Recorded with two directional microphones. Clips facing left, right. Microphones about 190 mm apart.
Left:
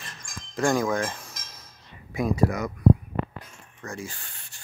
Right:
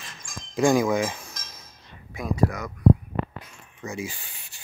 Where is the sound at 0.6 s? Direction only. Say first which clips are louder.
Right 3 dB; 10° right (ahead or behind).